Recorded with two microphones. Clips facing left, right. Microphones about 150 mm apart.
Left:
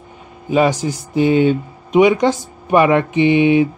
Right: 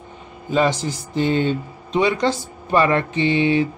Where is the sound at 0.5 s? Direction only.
15° left (ahead or behind).